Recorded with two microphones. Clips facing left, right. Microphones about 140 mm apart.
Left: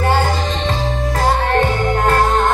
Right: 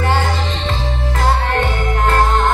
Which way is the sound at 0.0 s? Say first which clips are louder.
Left 2 dB; 35° left (ahead or behind).